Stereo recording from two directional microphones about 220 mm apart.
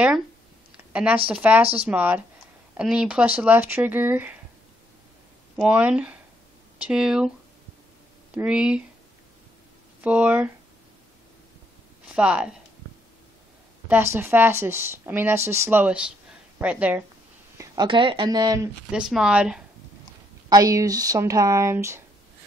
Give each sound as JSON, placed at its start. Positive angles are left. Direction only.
{"t": 0.9, "sound": "a woman's voice", "side_deg": -5}
{"t": 5.6, "sound": "speech", "side_deg": -5}
{"t": 8.4, "sound": "speech", "side_deg": -5}
{"t": 10.0, "sound": "a woman's voice", "side_deg": -5}
{"t": 12.1, "sound": "speech", "side_deg": -5}
{"t": 13.8, "sound": "a woman's voice", "side_deg": -10}
{"t": 17.6, "sound": "speech", "side_deg": -20}
{"t": 18.9, "sound": "speech", "side_deg": -5}
{"t": 20.4, "sound": "a woman's voice", "side_deg": -15}